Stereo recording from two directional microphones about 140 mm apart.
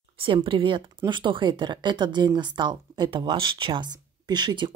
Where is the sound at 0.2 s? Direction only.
40° right (ahead or behind).